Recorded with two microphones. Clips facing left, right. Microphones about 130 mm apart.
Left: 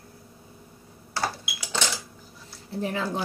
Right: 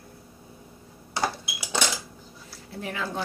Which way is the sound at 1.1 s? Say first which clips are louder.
Right 1 dB; 15° right (ahead or behind).